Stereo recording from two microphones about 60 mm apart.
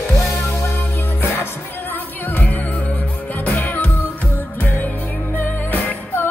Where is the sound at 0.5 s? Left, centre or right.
Left.